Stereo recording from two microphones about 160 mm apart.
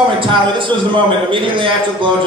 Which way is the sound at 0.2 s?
30° right (ahead or behind).